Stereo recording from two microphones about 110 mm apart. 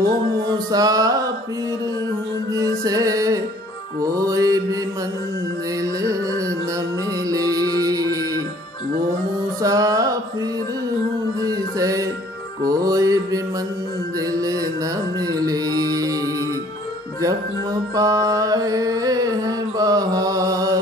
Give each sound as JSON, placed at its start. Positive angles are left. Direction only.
{"t": 0.7, "sound": "music", "side_deg": -35}
{"t": 2.5, "sound": "music", "side_deg": -35}
{"t": 7.2, "sound": "music", "side_deg": -35}
{"t": 9.6, "sound": "music", "side_deg": -35}
{"t": 11.4, "sound": "music", "side_deg": -30}
{"t": 15.1, "sound": "music", "side_deg": -35}
{"t": 17.9, "sound": "music", "side_deg": -30}